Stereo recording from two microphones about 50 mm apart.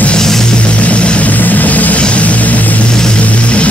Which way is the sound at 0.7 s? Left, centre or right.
Left.